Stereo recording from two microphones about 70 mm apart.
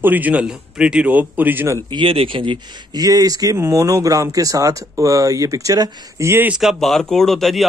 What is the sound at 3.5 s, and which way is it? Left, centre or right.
Speech, right.